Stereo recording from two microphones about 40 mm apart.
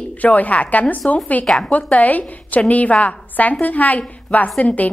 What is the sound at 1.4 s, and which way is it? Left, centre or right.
Speech, centre.